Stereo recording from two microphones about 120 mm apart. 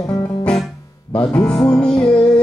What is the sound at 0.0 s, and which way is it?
Music, 35° left (ahead or behind).